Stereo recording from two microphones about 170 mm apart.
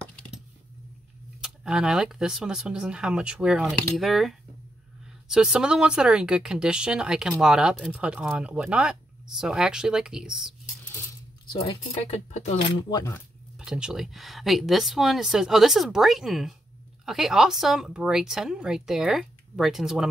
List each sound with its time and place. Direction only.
1.4 s speech: 5° right (ahead or behind)
11.5 s speech: 35° left (ahead or behind)
12.7 s speech: 20° left (ahead or behind)
13.6 s speech: 5° right (ahead or behind)